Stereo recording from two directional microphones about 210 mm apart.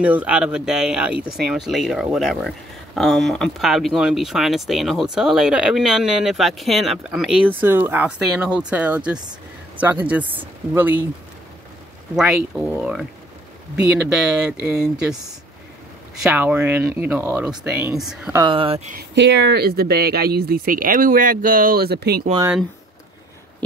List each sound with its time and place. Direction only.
0.0 s speech: 5° right (ahead or behind)
12.2 s speech: centre (ahead or behind)
16.2 s speech: 5° right (ahead or behind)
18.4 s speech: 25° right (ahead or behind)
18.9 s speech: 50° right (ahead or behind)